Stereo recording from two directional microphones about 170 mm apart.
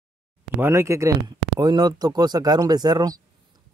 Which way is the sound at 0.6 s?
15° right (ahead or behind).